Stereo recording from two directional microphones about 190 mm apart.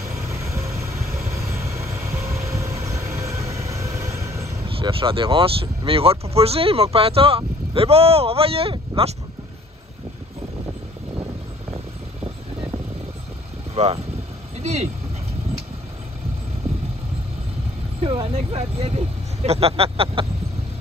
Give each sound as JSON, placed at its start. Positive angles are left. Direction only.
{"t": 0.3, "sound": "vehicle", "side_deg": -15}
{"t": 0.9, "sound": "vehicle", "side_deg": -35}
{"t": 2.5, "sound": "vehicle", "side_deg": -15}
{"t": 3.3, "sound": "vehicle", "side_deg": -35}
{"t": 4.4, "sound": "speech", "side_deg": -30}
{"t": 13.7, "sound": "speech", "side_deg": -30}
{"t": 18.0, "sound": "speech", "side_deg": -30}